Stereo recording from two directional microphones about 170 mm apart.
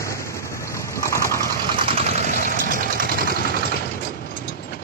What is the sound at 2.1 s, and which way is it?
Engine, 60° left (ahead or behind).